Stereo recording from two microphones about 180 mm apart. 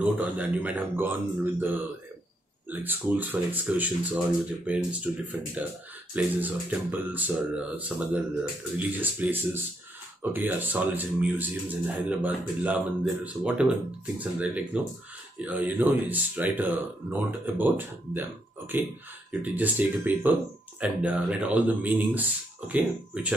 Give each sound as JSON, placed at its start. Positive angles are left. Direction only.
{"t": 0.0, "sound": "speech", "side_deg": -10}